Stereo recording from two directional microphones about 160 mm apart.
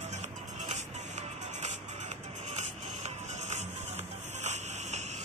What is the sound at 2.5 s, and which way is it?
Music, 45° right (ahead or behind).